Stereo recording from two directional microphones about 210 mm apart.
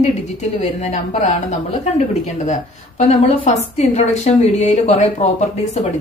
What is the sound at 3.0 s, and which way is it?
A woman's voice, 30° left (ahead or behind).